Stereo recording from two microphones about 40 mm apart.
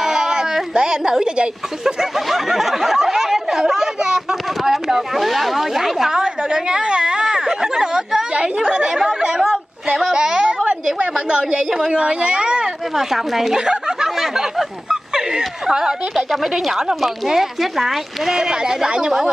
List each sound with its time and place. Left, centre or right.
0.0 s speech: centre
2.1 s chatter: centre
9.9 s a woman's voice: centre
12.9 s speech: centre
13.6 s a sound: centre
14.2 s speech: centre
16.6 s a woman's voice: centre